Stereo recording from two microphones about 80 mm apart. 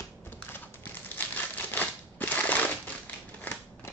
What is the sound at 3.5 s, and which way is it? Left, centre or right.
Scissors, centre.